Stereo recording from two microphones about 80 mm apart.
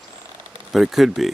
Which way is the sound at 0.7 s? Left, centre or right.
Centre.